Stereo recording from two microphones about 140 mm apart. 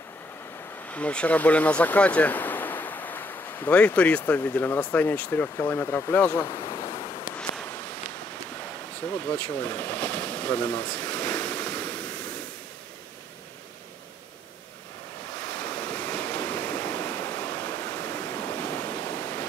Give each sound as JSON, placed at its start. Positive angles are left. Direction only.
{"t": 0.8, "sound": "speech", "side_deg": 10}
{"t": 6.4, "sound": "a sound", "side_deg": 25}
{"t": 9.1, "sound": "speech", "side_deg": 10}
{"t": 15.4, "sound": "waves", "side_deg": 10}